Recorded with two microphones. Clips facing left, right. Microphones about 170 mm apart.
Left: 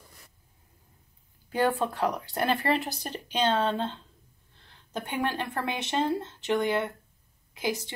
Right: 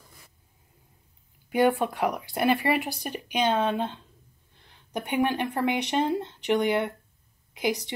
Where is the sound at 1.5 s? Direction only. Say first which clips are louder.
Right 4 dB; 15° right (ahead or behind).